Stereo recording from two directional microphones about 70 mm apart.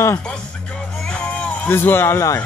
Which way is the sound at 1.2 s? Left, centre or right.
Centre.